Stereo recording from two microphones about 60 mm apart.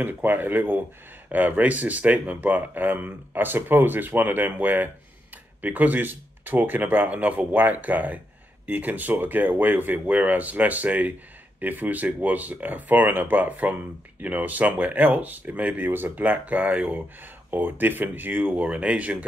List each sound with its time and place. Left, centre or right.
0.0 s speech: right